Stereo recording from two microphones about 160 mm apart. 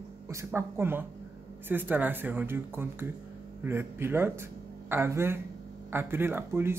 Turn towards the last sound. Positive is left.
turn(degrees=-15)  # may be behind; listen again after turning